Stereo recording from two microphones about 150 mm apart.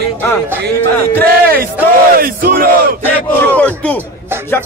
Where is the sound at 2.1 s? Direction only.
75° right (ahead or behind).